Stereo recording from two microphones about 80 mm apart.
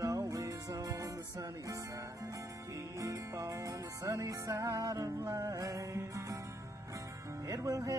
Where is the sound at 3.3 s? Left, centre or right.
Right.